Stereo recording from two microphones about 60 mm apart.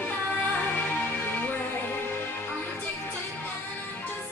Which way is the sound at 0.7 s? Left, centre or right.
Left.